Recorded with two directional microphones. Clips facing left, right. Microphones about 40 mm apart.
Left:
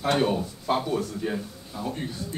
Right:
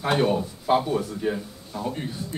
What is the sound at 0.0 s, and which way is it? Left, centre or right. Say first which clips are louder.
Speech: right 2 dB; centre.